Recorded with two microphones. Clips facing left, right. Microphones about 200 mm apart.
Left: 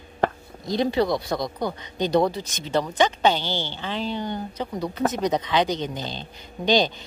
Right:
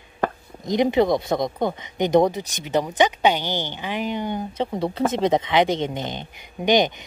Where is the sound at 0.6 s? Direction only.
20° right (ahead or behind).